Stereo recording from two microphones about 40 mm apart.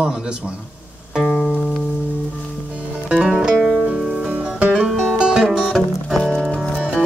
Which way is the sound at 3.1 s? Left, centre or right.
Right.